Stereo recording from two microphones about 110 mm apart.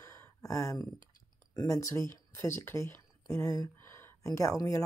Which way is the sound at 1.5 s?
35° left (ahead or behind).